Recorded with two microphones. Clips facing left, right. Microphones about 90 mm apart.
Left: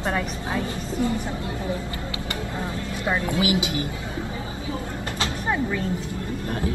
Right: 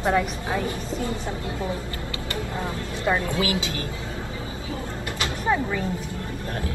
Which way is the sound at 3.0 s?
25° right (ahead or behind).